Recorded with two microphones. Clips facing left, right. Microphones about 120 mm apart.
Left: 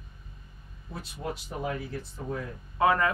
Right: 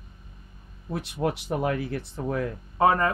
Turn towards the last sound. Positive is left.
turn(degrees=-35)  # may be behind; listen again after turning